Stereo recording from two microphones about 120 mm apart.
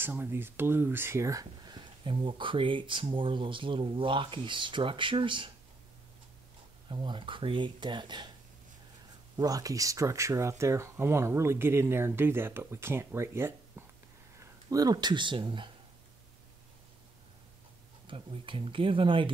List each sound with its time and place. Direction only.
0.0 s speech: 20° right (ahead or behind); by 5.5 s 45° right (ahead or behind)
6.9 s speech: 40° right (ahead or behind)
9.4 s speech: 30° right (ahead or behind)
18.0 s speech: 50° right (ahead or behind)